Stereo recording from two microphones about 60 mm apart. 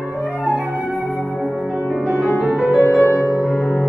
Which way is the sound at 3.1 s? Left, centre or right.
Left.